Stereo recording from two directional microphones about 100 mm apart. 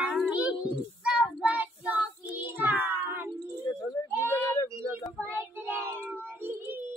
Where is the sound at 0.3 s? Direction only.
10° right (ahead or behind).